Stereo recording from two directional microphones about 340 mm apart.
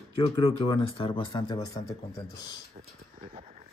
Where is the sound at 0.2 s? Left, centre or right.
Centre.